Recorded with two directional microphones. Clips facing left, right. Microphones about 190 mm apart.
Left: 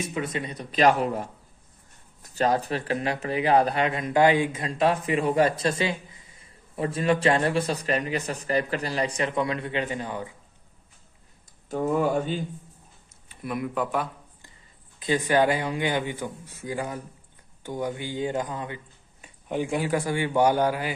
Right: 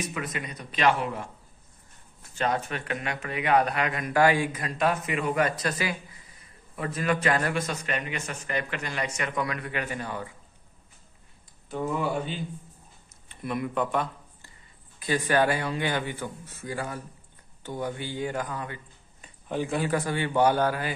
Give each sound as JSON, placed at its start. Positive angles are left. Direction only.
{"t": 0.0, "sound": "a man's voice", "side_deg": 30}
{"t": 11.7, "sound": "speech", "side_deg": 45}
{"t": 13.1, "sound": "speech", "side_deg": 5}
{"t": 15.0, "sound": "speech", "side_deg": 20}